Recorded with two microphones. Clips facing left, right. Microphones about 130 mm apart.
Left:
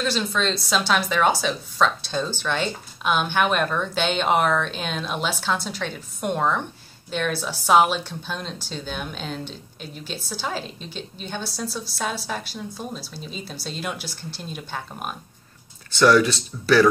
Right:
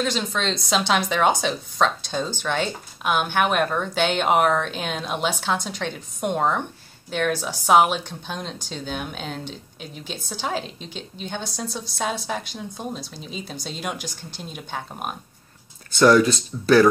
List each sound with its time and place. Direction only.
0.0 s a woman's voice: 15° right (ahead or behind)
16.0 s speech: 40° right (ahead or behind)